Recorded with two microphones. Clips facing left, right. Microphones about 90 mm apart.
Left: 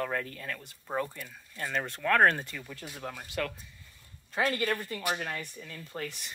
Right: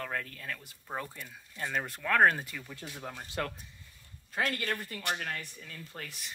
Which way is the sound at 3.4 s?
25° right (ahead or behind).